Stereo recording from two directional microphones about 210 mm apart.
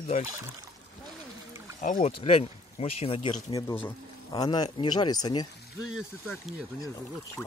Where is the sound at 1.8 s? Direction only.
35° left (ahead or behind).